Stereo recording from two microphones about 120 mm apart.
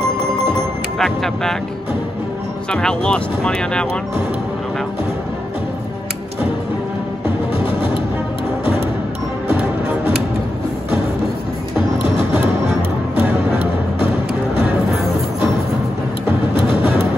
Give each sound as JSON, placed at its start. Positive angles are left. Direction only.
{"t": 0.9, "sound": "speech", "side_deg": 5}
{"t": 2.7, "sound": "speech", "side_deg": 5}
{"t": 9.5, "sound": "music", "side_deg": -15}
{"t": 13.1, "sound": "music", "side_deg": -15}